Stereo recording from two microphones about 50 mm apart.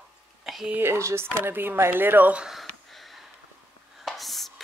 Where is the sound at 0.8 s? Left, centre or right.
Right.